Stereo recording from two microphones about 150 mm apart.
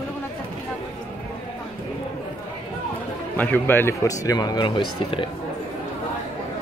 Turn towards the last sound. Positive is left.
turn(degrees=35)  # may be behind; listen again after turning